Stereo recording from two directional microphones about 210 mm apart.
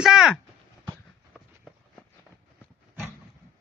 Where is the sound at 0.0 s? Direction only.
Centre (ahead or behind).